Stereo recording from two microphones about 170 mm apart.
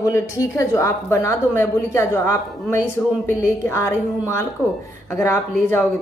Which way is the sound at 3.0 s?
5° left (ahead or behind).